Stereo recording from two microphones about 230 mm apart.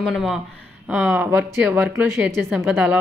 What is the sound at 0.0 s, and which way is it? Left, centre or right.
Speech, centre.